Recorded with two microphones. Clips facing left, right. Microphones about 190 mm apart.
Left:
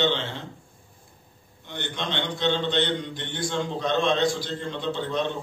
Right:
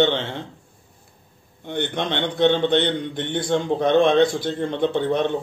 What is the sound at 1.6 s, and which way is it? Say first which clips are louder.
A man's voice: right 8 dB; 55° right (ahead or behind).